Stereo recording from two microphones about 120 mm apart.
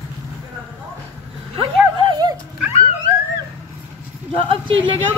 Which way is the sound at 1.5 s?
45° right (ahead or behind).